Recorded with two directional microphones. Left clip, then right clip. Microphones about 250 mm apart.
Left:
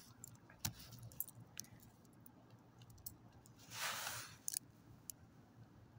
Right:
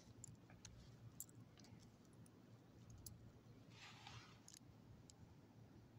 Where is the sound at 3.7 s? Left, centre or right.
Left.